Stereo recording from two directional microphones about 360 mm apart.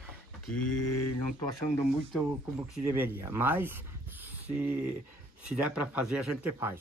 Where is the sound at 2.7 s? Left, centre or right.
Centre.